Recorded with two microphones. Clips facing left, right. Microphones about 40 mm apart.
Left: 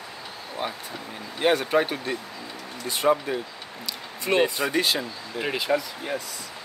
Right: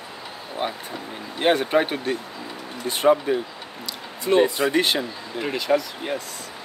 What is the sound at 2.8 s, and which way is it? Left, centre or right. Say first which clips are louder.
Speech: right 4 dB; right.